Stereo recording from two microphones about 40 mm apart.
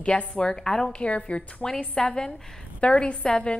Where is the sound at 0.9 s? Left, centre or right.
Left.